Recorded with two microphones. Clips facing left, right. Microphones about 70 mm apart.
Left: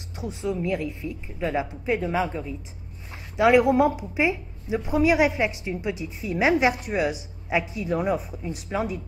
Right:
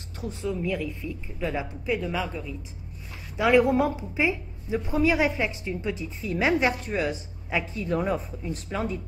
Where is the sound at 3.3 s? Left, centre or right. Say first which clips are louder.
Left 3 dB; centre.